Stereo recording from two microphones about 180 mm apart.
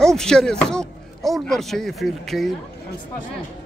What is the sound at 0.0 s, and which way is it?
Speech, 5° left (ahead or behind).